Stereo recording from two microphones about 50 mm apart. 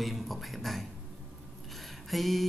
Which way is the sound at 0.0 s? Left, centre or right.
Centre.